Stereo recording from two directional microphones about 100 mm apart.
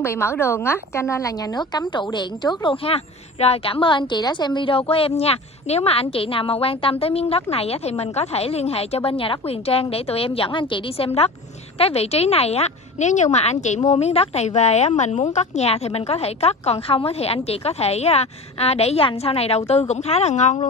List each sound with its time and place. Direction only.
0.0 s a woman's voice: 25° left (ahead or behind); by 11.1 s 55° left (ahead or behind)
11.8 s a woman's voice: 90° left